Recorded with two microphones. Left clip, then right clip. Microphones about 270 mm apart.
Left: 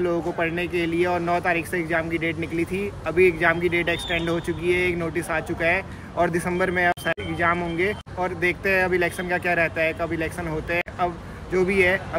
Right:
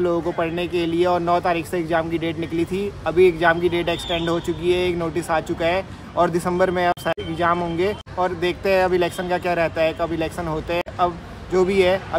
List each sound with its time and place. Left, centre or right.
0.0 s speech: centre